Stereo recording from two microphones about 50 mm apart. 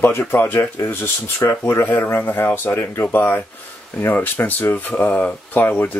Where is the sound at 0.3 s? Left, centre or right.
Left.